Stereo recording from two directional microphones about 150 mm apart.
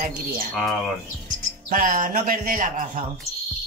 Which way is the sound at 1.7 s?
65° right (ahead or behind).